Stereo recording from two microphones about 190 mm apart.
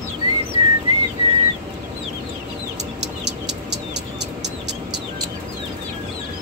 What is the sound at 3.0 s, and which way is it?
Bird, 65° right (ahead or behind).